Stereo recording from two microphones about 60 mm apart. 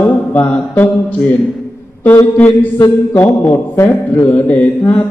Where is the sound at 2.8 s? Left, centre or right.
Left.